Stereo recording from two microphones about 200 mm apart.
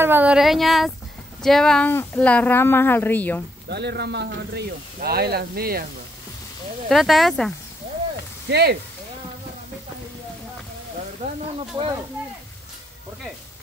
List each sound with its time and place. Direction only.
0.0 s a woman's voice: 10° right (ahead or behind); by 3.4 s 10° left (ahead or behind)
3.6 s speech: 55° right (ahead or behind)
6.9 s speech: centre (ahead or behind)
8.5 s speech: 55° right (ahead or behind)